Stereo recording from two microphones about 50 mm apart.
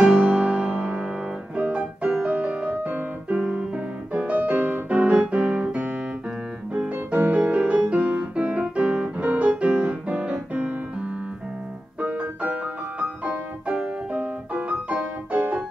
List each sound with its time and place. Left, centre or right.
0.0 s music: right
1.6 s piano: right
2.2 s music: right
3.3 s piano: centre
4.1 s music: right
6.7 s keyboard: right
7.3 s piano: right
12.0 s music: right